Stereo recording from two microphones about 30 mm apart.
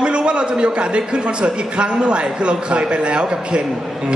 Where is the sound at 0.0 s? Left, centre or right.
Right.